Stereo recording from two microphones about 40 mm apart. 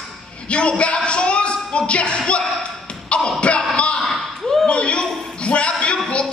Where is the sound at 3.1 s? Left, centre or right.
Left.